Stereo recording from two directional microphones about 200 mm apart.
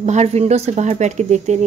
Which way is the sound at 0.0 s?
35° right (ahead or behind).